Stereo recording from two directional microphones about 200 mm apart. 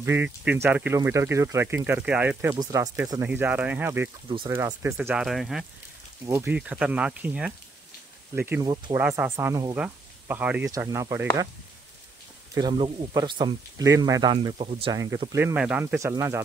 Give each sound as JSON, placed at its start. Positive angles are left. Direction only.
{"t": 0.0, "sound": "speech", "side_deg": -10}
{"t": 2.5, "sound": "speech", "side_deg": -20}
{"t": 6.2, "sound": "speech", "side_deg": -10}
{"t": 8.6, "sound": "speech", "side_deg": -20}
{"t": 9.0, "sound": "speech", "side_deg": -10}
{"t": 12.5, "sound": "speech", "side_deg": -20}